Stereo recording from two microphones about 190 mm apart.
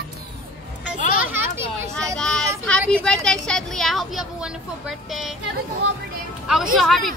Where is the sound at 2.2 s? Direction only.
5° left (ahead or behind).